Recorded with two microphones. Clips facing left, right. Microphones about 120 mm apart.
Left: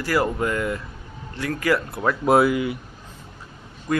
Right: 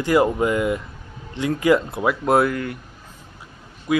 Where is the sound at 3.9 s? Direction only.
5° right (ahead or behind).